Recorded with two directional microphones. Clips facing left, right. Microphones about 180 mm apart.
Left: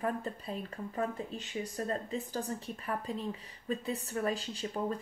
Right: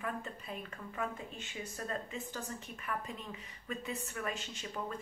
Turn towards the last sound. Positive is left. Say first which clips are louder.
# left 6 dB
turn(degrees=35)  # may be behind; listen again after turning